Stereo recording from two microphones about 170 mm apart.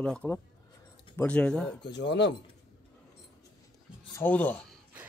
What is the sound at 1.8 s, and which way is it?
Speech, 90° left.